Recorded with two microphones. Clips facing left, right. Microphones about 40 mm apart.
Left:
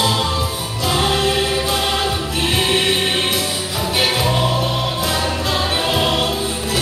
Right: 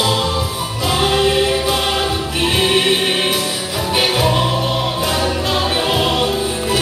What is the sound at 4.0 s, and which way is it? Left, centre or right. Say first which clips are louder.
Music: right 2 dB; centre.